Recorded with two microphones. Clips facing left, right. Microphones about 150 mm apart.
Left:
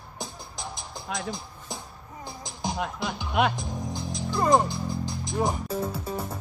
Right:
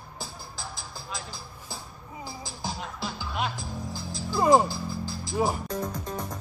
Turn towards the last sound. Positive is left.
turn(degrees=10)  # may be behind; listen again after turning